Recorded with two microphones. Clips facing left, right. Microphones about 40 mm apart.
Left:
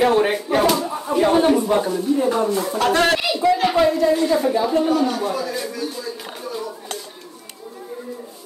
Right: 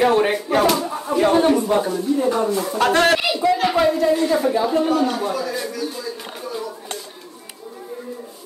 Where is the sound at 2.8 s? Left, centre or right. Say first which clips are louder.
Right 2 dB; right.